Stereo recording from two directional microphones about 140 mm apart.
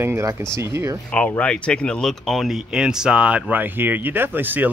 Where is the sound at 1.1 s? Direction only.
10° left (ahead or behind).